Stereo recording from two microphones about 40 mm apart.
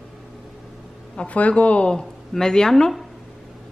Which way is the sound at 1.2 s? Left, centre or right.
Left.